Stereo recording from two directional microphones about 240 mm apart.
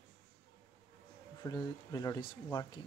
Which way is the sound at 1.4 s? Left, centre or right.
Centre.